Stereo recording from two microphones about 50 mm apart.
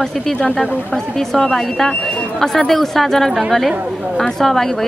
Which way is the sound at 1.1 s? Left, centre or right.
Centre.